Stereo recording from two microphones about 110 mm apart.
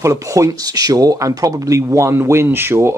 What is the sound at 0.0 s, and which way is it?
Speech, 30° right (ahead or behind).